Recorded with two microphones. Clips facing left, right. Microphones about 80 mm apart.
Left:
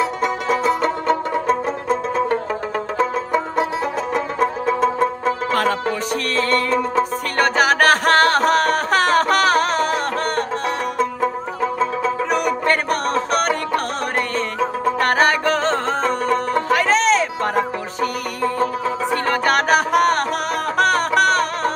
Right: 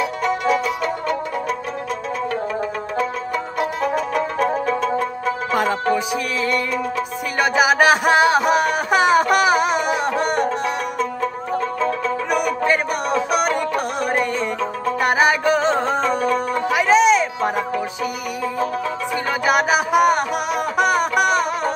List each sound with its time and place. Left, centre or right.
0.0 s music: left
3.5 s music: left
5.5 s music: centre
12.3 s music: centre
15.0 s music: centre
19.4 s music: centre